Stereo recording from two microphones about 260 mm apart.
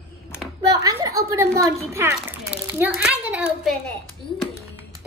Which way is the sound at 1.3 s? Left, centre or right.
Centre.